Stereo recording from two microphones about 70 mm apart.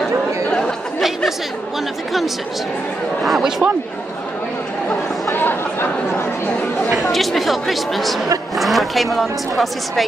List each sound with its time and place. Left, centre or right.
0.0 s chatter: centre
3.3 s speech: centre
5.3 s chatter: left
7.1 s speech: centre